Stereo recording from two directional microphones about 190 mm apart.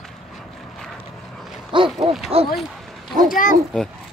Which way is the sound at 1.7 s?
25° right (ahead or behind).